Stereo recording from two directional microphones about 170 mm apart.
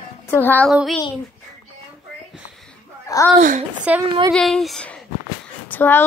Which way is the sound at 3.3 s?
45° right (ahead or behind).